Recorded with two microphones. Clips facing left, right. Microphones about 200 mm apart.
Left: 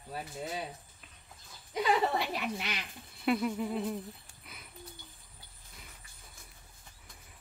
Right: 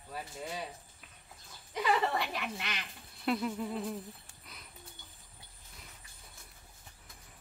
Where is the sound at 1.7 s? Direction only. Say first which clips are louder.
Left 2 dB; 15° left (ahead or behind).